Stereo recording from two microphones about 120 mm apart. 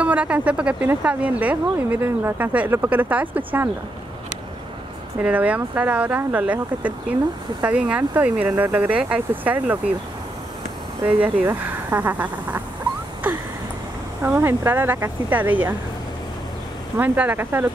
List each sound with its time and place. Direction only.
0.0 s speech: 10° right (ahead or behind)
5.2 s speech: 10° right (ahead or behind)
11.1 s speech: 10° right (ahead or behind)
14.2 s speech: 20° right (ahead or behind)
16.9 s speech: 15° right (ahead or behind)